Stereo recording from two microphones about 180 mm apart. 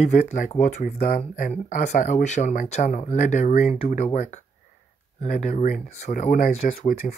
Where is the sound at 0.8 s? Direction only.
55° left (ahead or behind).